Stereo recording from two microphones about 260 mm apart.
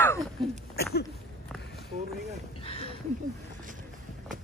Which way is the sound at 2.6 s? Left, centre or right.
Left.